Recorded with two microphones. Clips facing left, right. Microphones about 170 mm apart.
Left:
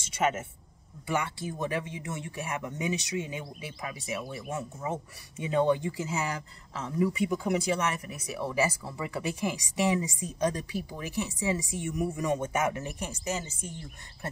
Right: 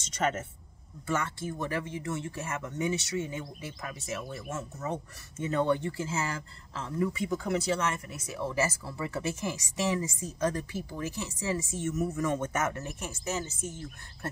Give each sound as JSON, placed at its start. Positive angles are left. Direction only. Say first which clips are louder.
{"t": 0.0, "sound": "speech", "louder": "left 2 dB", "side_deg": 10}